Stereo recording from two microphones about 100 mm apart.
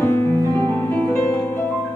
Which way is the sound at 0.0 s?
25° left (ahead or behind).